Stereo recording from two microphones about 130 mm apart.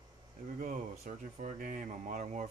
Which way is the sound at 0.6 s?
75° right (ahead or behind).